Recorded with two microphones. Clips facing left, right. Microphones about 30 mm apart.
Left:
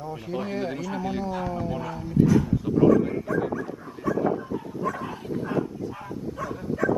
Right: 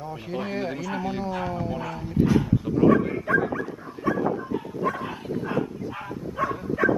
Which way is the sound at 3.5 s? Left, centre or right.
Right.